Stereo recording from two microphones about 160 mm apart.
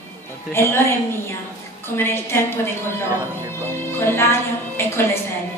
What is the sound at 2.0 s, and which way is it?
Speech, 15° left (ahead or behind).